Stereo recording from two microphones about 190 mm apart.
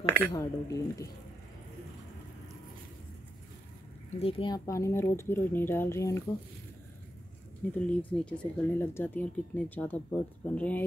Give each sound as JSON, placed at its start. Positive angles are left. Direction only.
{"t": 0.3, "sound": "speech", "side_deg": 15}
{"t": 4.2, "sound": "speech", "side_deg": 30}
{"t": 7.7, "sound": "speech", "side_deg": 10}